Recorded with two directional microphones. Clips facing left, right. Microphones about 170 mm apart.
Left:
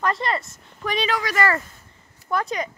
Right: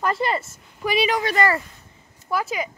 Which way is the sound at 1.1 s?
20° right (ahead or behind).